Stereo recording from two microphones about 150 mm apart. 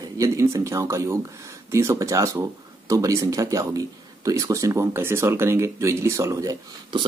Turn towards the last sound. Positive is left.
turn(degrees=-20)  # may be behind; listen again after turning